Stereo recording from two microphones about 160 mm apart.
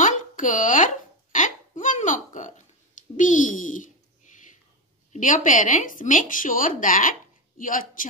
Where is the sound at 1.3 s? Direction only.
55° left (ahead or behind).